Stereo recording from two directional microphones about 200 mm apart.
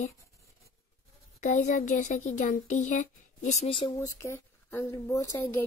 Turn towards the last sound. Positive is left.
turn(degrees=10)  # may be behind; listen again after turning